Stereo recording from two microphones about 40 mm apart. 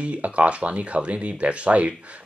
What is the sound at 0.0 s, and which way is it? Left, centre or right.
Speech, right.